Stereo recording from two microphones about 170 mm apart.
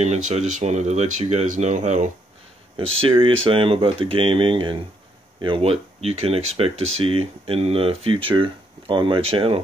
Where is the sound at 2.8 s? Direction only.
30° right (ahead or behind).